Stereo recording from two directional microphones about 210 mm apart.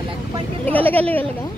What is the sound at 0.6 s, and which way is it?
Speech, 10° left (ahead or behind).